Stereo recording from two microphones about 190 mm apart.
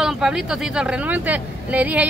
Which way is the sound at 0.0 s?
5° right (ahead or behind).